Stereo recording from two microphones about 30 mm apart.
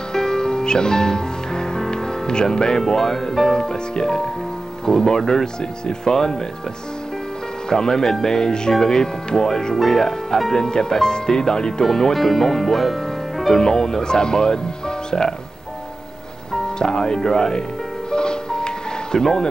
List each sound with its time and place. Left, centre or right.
0.1 s music: centre
2.9 s speech: centre
3.5 s speech: left
7.7 s speech: left
9.8 s speech: centre
11.8 s speech: centre
13.5 s speech: centre
16.6 s speech: left
18.1 s music: left
19.1 s speech: centre